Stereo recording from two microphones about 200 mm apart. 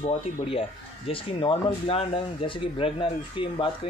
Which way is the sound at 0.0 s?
30° left (ahead or behind).